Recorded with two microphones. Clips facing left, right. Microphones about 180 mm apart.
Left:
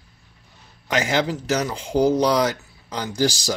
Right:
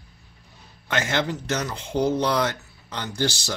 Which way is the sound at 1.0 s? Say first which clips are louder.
Left 4 dB; 10° left (ahead or behind).